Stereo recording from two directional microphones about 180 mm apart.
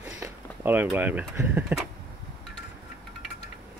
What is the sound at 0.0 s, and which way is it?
Speech, 10° right (ahead or behind).